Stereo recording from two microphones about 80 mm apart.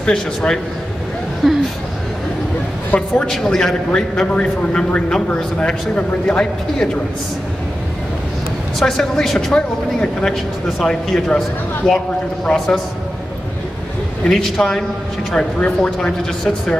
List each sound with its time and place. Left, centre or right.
0.0 s a man's voice: centre
1.4 s a man's voice: centre
2.9 s a woman's voice: left
3.3 s a man's voice: centre
8.7 s a man's voice: centre
14.2 s a man's voice: centre